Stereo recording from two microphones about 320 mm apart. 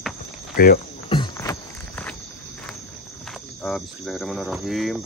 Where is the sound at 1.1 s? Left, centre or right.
Centre.